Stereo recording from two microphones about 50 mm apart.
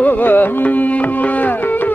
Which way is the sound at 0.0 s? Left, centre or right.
Left.